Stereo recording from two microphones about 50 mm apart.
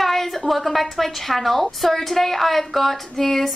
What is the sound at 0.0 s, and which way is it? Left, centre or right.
A woman's voice, centre.